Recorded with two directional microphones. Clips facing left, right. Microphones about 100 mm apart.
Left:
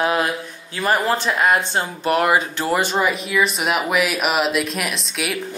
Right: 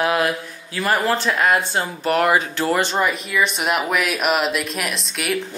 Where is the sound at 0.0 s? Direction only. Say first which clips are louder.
Even; 20° left (ahead or behind).